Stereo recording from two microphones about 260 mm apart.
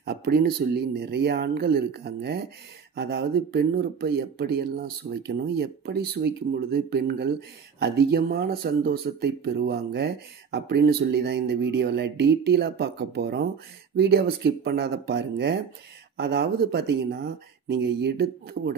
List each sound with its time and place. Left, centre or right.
0.0 s speech: right